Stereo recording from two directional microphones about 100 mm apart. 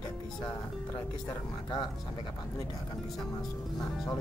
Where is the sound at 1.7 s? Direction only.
45° left (ahead or behind).